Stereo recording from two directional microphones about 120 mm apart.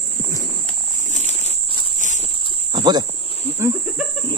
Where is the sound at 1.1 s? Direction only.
70° left (ahead or behind).